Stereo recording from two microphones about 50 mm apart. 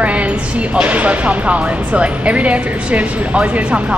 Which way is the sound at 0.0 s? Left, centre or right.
Right.